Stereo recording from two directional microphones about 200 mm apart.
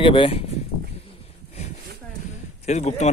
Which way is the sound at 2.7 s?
35° left (ahead or behind).